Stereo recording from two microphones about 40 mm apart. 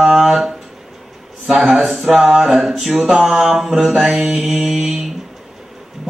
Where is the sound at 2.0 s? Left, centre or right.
Centre.